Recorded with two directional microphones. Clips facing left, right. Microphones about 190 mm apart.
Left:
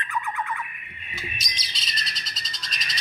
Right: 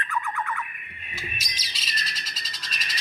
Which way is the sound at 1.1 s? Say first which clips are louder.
Left 1 dB; 5° right (ahead or behind).